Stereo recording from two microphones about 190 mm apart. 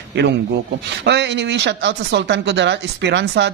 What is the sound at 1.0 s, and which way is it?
Speech, 65° right (ahead or behind).